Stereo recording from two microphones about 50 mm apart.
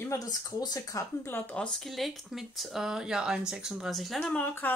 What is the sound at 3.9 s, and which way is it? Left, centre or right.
Speech, centre.